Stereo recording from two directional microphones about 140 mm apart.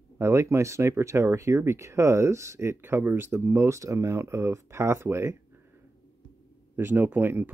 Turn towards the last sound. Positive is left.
turn(degrees=-15)  # may be behind; listen again after turning